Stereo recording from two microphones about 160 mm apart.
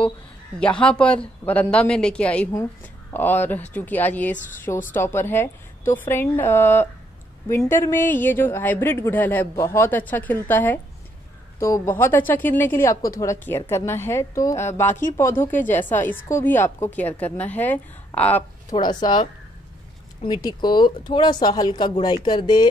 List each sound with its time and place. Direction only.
0.6 s speech: 5° left (ahead or behind)
4.4 s speech: 55° left (ahead or behind)
4.9 s speech: 15° left (ahead or behind)
18.7 s speech: 25° left (ahead or behind)
20.2 s speech: 25° left (ahead or behind)